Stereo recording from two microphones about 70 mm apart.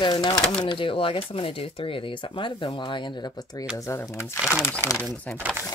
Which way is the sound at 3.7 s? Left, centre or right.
Left.